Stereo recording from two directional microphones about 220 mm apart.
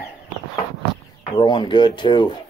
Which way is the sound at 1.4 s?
20° left (ahead or behind).